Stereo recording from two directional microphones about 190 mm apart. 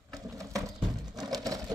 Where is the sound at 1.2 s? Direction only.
20° right (ahead or behind).